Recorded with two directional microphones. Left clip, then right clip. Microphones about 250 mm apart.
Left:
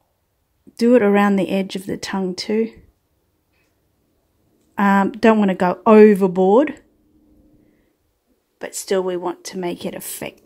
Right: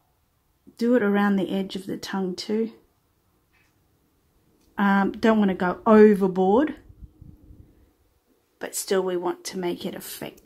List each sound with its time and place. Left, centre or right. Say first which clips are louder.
0.7 s speech: left 8 dB; centre
4.7 s speech: left 6 dB; centre
8.5 s speech: left 4 dB; centre